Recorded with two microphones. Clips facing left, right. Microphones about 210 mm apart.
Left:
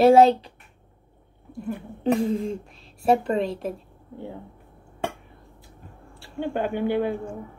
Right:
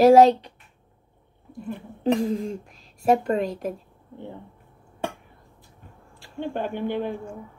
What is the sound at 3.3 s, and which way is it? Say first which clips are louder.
Speech: even; 30° left (ahead or behind).